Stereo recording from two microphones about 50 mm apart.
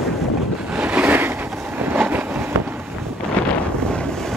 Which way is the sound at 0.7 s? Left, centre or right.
Right.